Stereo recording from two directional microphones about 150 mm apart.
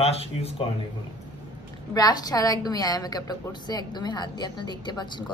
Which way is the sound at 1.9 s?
25° left (ahead or behind).